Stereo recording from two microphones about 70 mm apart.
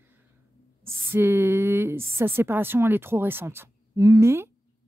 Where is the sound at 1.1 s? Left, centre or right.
Right.